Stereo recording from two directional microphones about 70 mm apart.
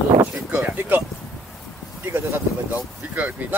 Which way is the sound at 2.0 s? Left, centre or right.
Right.